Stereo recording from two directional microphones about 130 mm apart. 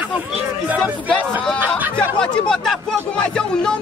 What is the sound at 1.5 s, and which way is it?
Speech, 15° right (ahead or behind).